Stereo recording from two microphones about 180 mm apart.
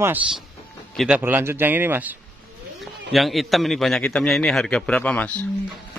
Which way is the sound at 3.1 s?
Centre (ahead or behind).